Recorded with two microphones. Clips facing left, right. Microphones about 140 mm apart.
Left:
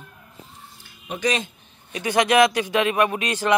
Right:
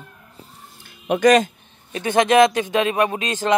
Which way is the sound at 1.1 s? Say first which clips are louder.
Right 10 dB; 50° right (ahead or behind).